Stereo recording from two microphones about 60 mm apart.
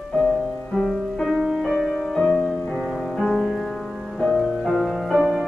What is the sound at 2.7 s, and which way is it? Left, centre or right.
Music, centre.